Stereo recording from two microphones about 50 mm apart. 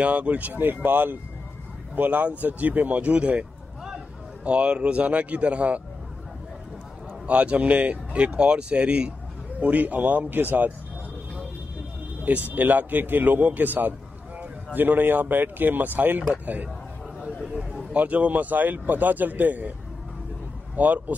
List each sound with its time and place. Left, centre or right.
0.0 s speech: right
2.0 s speech: right
4.5 s speech: right
7.2 s speech: right
12.4 s speech: right
17.5 s a sound: centre
17.9 s speech: right
20.7 s speech: right